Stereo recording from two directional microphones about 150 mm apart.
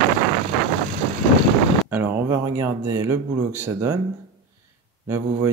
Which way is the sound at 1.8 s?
15° right (ahead or behind).